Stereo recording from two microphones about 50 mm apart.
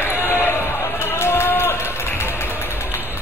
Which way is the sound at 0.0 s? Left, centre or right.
Left.